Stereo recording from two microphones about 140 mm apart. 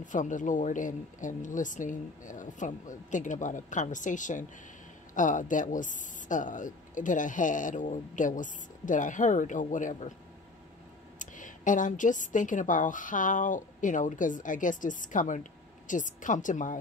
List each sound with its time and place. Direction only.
0.0 s speech: 65° left (ahead or behind)
11.1 s speech: 65° left (ahead or behind)